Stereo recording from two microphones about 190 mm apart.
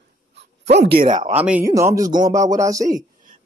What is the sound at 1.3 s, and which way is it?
Speech, 10° right (ahead or behind).